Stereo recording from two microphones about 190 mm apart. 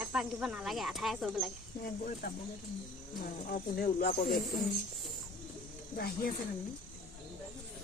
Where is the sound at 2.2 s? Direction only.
50° left (ahead or behind).